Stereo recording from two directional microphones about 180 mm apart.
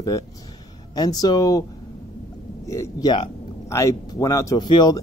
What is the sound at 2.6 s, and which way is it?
Speech, 15° left (ahead or behind).